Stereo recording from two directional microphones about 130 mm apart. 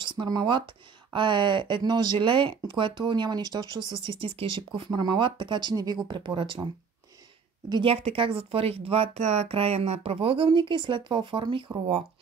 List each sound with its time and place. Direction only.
0.0 s speech: 35° right (ahead or behind)
7.8 s speech: 50° right (ahead or behind)